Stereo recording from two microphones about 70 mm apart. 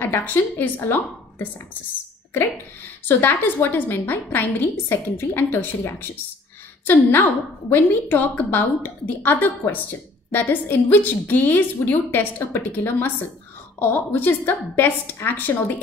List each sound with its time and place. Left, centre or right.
0.0 s a woman's voice: left
3.1 s a woman's voice: left